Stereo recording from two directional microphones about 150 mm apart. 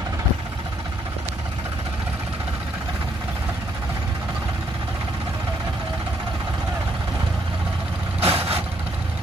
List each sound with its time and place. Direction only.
8.2 s vehicle: 40° right (ahead or behind)